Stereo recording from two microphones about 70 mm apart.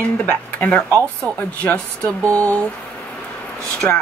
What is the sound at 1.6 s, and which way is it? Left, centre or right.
Speech, centre.